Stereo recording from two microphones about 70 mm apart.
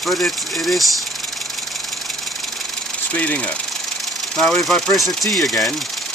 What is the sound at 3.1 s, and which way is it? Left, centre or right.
Speech, centre.